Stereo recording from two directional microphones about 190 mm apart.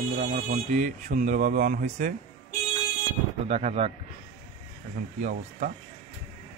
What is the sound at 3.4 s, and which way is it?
Speech, 35° right (ahead or behind).